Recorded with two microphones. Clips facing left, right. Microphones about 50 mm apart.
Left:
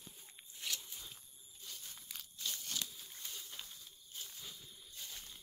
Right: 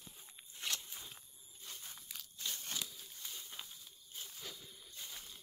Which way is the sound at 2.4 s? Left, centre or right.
Centre.